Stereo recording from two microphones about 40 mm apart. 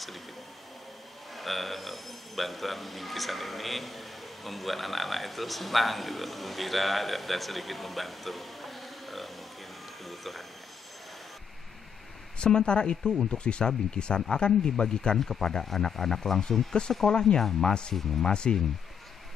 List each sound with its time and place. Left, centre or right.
1.3 s speech: centre
10.0 s a sound: centre
12.4 s speech: left
18.2 s speech: left